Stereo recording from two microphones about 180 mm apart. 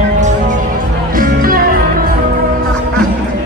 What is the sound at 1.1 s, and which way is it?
Music, 50° right (ahead or behind).